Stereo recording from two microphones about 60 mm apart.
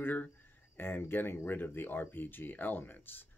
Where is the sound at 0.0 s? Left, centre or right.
Left.